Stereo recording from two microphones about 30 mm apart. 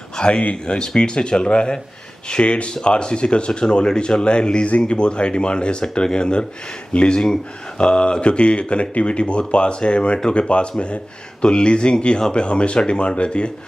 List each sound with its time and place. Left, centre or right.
0.2 s speech: left
11.4 s speech: left